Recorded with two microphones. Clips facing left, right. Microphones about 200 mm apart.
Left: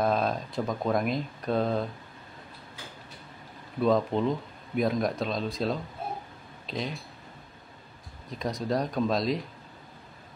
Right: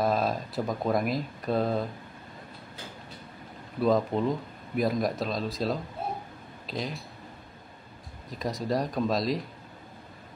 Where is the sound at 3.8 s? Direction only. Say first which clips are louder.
Even; centre (ahead or behind).